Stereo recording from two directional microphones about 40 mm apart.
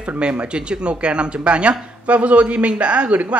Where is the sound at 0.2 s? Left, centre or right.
Right.